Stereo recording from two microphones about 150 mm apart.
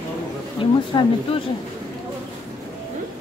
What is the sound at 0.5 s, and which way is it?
Speech, 35° left (ahead or behind).